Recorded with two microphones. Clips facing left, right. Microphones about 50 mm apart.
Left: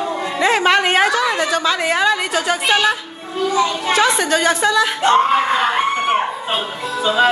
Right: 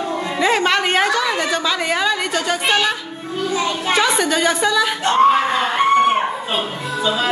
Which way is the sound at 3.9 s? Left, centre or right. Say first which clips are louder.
Left 2 dB; centre.